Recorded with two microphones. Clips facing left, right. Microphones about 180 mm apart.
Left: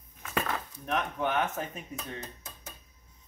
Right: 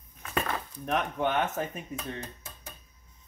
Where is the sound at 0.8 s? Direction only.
30° right (ahead or behind).